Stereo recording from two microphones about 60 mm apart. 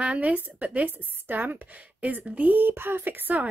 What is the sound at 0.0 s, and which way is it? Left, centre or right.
A woman's voice, right.